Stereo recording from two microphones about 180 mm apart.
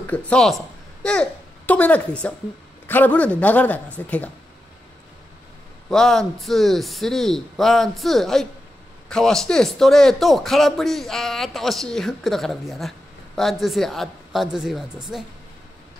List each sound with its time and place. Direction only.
0.0 s a woman's voice: 5° left (ahead or behind)
5.9 s a man's voice: 5° left (ahead or behind)